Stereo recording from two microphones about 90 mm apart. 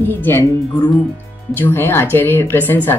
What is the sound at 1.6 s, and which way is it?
Speech, 25° left (ahead or behind).